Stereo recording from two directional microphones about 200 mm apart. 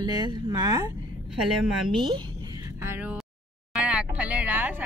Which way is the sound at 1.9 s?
25° right (ahead or behind).